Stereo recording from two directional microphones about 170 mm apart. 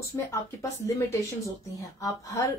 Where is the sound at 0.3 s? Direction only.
20° left (ahead or behind).